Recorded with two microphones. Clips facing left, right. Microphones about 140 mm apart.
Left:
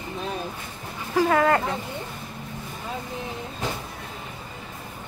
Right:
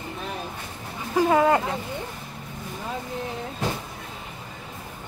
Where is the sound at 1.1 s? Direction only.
15° right (ahead or behind).